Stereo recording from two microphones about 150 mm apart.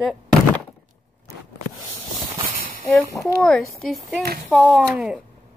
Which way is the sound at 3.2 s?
5° left (ahead or behind).